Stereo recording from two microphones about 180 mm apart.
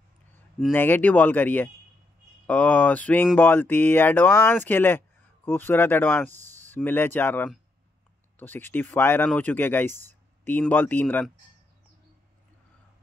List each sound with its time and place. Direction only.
0.7 s speech: 10° left (ahead or behind)